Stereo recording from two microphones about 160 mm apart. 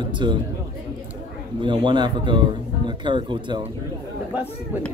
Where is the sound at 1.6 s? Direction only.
30° right (ahead or behind).